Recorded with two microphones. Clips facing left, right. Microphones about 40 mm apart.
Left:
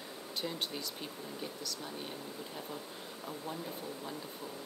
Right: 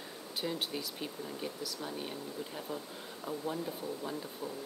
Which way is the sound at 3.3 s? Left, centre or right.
Centre.